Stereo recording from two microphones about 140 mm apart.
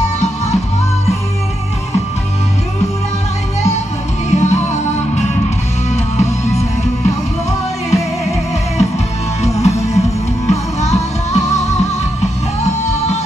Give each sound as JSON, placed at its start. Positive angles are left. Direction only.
{"t": 4.3, "sound": "music", "side_deg": 55}
{"t": 7.9, "sound": "music", "side_deg": 50}